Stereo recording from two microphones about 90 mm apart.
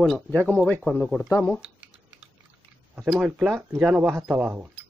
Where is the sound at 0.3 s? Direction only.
20° left (ahead or behind).